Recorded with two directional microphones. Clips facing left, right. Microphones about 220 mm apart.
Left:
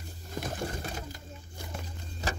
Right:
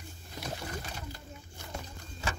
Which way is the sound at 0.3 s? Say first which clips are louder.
Left 4 dB; 45° left (ahead or behind).